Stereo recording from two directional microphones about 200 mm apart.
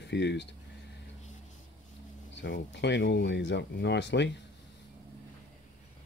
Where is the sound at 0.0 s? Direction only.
60° left (ahead or behind).